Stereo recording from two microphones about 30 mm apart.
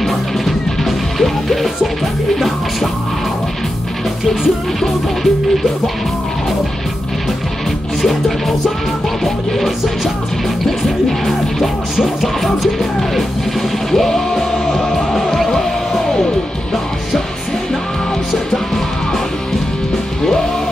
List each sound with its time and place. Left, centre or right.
0.0 s music: centre
8.0 s music: centre
13.1 s music: centre
15.5 s music: centre